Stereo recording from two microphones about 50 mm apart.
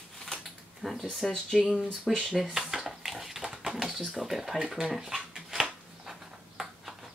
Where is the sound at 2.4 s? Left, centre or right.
Centre.